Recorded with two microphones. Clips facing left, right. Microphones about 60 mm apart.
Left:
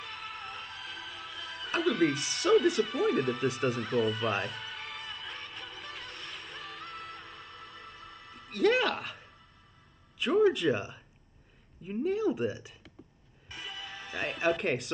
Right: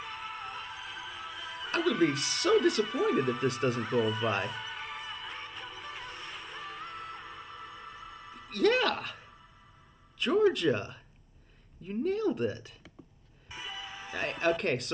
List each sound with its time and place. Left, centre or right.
0.2 s music: centre
1.7 s speech: centre
4.6 s music: left
5.5 s music: centre
6.1 s music: left
7.0 s music: centre
10.1 s speech: centre
13.5 s music: centre
14.1 s speech: centre